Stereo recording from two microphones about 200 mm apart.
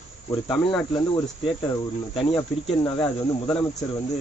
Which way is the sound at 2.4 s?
15° left (ahead or behind).